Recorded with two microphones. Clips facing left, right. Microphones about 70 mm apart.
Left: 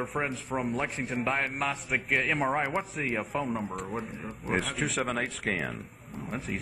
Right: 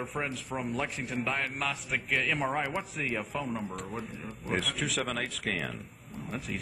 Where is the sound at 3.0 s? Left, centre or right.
Left.